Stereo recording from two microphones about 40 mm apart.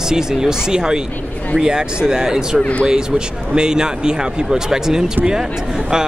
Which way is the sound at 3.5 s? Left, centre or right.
Centre.